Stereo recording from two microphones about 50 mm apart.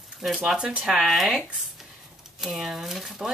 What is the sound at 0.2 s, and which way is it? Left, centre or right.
Speech, centre.